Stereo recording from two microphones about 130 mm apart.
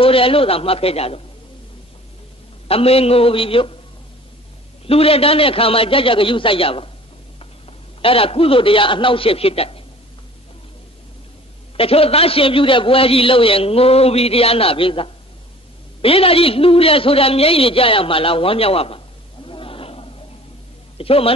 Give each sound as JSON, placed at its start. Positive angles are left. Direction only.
{"t": 0.0, "sound": "a man's voice", "side_deg": 45}
{"t": 2.7, "sound": "a man's voice", "side_deg": 50}
{"t": 4.8, "sound": "a man's voice", "side_deg": 50}
{"t": 8.0, "sound": "a man's voice", "side_deg": 45}
{"t": 11.7, "sound": "a man's voice", "side_deg": 45}